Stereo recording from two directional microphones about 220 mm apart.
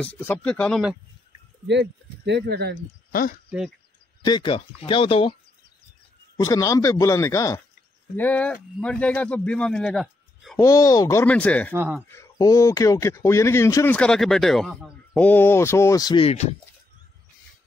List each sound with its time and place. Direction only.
0.0 s speech: 10° left (ahead or behind)
1.7 s speech: 50° right (ahead or behind)
3.1 s speech: 40° left (ahead or behind)
4.2 s speech: 20° left (ahead or behind)
6.3 s a man's voice: 15° left (ahead or behind)
10.6 s speech: 15° left (ahead or behind)
11.7 s speech: 10° right (ahead or behind)
12.1 s speech: 15° left (ahead or behind)